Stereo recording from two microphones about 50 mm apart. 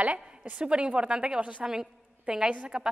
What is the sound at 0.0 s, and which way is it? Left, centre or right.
A woman's voice, right.